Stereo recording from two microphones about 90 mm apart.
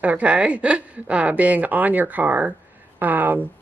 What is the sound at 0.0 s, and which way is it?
A woman's voice, 15° right (ahead or behind).